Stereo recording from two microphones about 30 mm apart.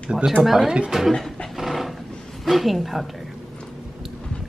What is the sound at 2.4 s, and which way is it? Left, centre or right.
Speech, centre.